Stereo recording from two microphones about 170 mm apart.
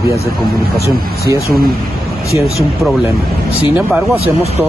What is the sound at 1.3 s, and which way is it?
Speech, 20° right (ahead or behind).